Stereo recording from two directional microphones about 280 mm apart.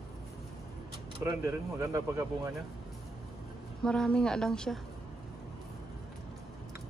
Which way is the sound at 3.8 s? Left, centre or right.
Centre.